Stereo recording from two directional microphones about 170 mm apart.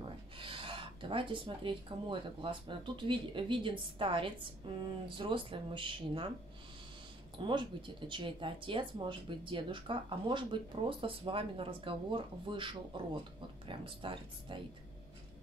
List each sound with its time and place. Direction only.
0.4 s speech: 30° right (ahead or behind)
7.3 s speech: 30° right (ahead or behind)